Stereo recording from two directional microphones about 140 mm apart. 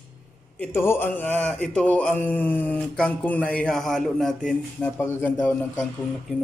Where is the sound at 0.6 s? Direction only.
15° left (ahead or behind).